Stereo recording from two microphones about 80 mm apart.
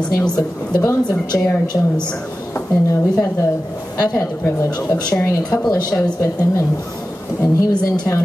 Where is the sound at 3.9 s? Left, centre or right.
Left.